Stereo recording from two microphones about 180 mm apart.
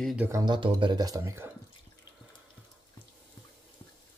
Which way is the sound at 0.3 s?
20° right (ahead or behind).